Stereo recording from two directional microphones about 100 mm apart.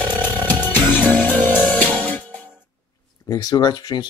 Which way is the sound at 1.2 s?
40° right (ahead or behind).